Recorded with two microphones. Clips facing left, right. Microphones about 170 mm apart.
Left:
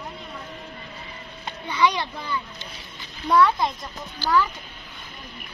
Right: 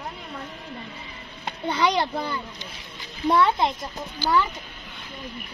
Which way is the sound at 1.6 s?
50° right (ahead or behind).